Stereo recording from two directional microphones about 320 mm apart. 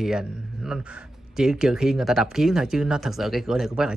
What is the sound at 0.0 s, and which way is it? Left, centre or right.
Speech, centre.